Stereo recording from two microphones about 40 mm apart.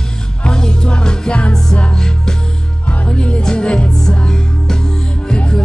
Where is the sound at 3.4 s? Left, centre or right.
Left.